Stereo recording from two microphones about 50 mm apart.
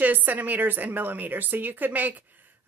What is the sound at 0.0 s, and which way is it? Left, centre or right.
A woman's voice, right.